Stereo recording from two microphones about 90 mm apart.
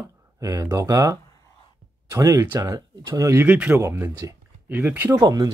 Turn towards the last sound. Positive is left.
turn(degrees=-40)  # may be behind; listen again after turning